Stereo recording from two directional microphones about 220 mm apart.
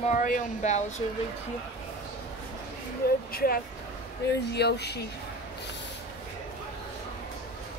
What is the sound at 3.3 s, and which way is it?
Speech, 40° left (ahead or behind).